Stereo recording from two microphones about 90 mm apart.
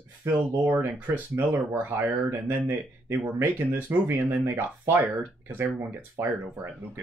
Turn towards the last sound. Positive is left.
turn(degrees=-30)  # may be behind; listen again after turning